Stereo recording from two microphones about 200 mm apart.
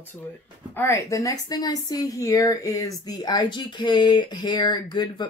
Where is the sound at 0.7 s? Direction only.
15° left (ahead or behind).